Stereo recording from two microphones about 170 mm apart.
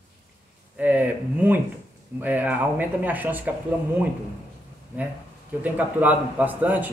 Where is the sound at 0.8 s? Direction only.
10° right (ahead or behind).